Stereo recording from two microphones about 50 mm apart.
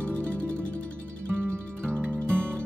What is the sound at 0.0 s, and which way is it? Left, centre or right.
Music, left.